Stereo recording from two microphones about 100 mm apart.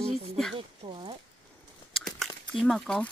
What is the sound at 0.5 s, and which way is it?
Speech, 65° right (ahead or behind).